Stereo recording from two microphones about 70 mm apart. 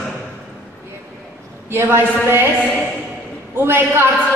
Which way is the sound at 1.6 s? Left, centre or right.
Right.